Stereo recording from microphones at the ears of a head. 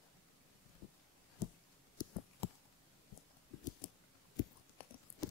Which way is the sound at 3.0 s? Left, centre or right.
Left.